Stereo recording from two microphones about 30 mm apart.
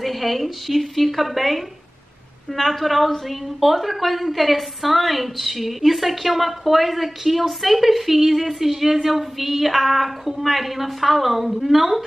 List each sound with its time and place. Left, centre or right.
0.0 s a woman's voice: centre